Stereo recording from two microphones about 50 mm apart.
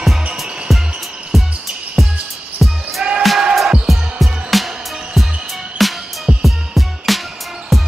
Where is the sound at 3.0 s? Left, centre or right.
Centre.